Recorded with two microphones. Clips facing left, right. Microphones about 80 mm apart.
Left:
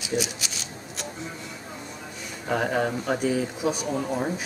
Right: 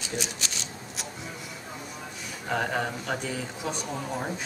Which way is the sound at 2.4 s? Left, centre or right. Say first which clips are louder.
Left 4 dB; centre.